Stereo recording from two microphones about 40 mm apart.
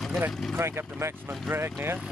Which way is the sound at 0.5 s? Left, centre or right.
Right.